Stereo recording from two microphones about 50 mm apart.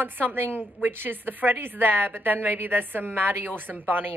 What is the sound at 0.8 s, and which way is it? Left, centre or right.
A woman's voice, right.